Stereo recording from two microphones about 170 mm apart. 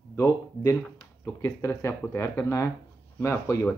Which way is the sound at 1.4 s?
15° left (ahead or behind).